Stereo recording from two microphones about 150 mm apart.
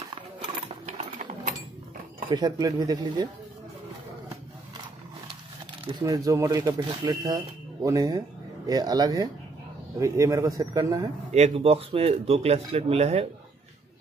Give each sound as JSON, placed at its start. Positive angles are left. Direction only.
{"t": 0.4, "sound": "a sound", "side_deg": -50}
{"t": 2.2, "sound": "speech", "side_deg": -30}
{"t": 5.9, "sound": "speech", "side_deg": -25}
{"t": 11.3, "sound": "speech", "side_deg": -45}